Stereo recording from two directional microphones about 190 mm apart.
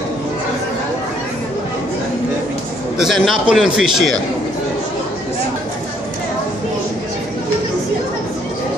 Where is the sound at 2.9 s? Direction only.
Centre (ahead or behind).